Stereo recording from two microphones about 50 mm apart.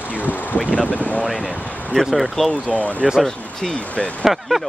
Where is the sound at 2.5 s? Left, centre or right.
Left.